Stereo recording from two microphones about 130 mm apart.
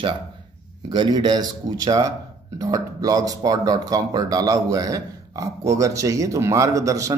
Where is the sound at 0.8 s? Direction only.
35° right (ahead or behind).